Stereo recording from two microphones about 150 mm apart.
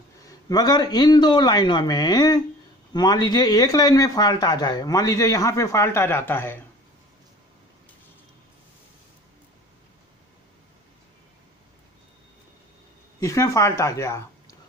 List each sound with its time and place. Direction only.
0.3 s a man's voice: 25° left (ahead or behind)
13.2 s a man's voice: 20° left (ahead or behind)